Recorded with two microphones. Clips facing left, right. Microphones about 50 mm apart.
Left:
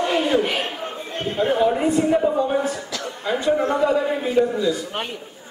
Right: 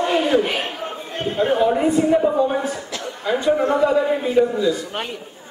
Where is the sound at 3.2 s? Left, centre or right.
Centre.